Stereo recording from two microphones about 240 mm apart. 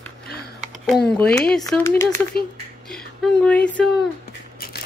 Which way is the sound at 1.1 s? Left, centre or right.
Centre.